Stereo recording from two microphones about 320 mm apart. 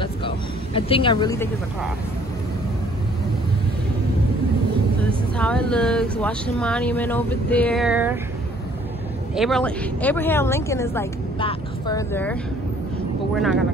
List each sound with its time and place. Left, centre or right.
0.7 s speech: centre
5.4 s speech: centre
9.3 s speech: centre
13.4 s speech: centre